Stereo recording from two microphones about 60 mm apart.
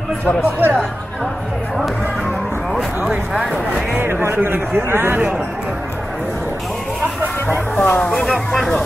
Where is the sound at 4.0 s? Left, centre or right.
Right.